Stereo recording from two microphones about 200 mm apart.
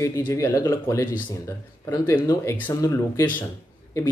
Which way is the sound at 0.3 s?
15° left (ahead or behind).